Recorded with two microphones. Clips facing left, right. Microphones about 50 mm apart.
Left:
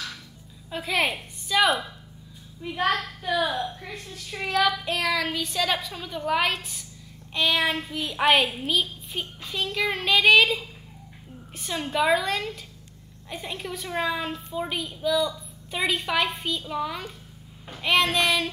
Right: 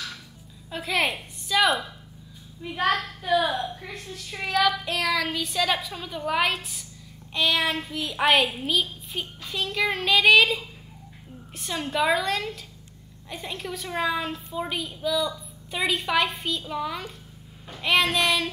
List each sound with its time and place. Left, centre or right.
0.7 s a woman's voice: centre